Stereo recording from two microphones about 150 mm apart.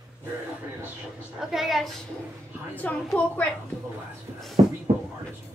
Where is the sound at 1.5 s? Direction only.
Centre (ahead or behind).